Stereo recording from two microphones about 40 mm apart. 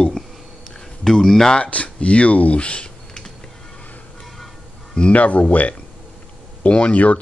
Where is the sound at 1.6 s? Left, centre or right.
Left.